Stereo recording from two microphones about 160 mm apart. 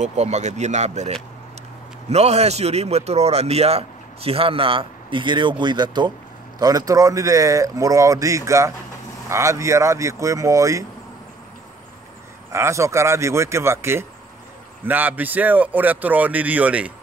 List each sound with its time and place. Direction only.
0.0 s a man's voice: 45° right (ahead or behind); by 10.9 s 20° right (ahead or behind)
12.5 s speech: 15° right (ahead or behind)